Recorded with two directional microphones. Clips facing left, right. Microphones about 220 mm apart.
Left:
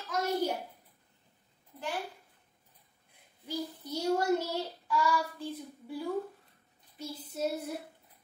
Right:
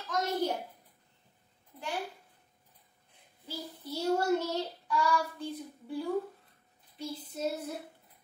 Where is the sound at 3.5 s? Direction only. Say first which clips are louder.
Left 4 dB; 15° left (ahead or behind).